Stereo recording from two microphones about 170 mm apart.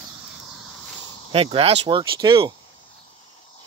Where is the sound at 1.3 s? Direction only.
35° right (ahead or behind).